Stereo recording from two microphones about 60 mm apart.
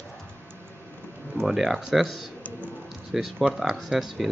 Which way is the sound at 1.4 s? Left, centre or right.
Centre.